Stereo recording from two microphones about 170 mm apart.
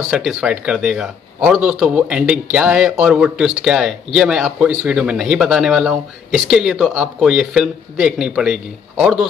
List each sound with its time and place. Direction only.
0.1 s speech: 5° right (ahead or behind)